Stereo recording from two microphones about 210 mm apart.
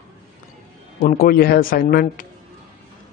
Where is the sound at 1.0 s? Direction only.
45° left (ahead or behind).